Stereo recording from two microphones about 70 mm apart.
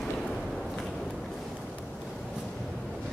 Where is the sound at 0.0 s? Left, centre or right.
Centre.